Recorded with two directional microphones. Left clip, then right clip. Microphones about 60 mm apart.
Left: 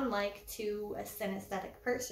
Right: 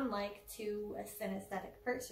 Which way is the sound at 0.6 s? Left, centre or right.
Centre.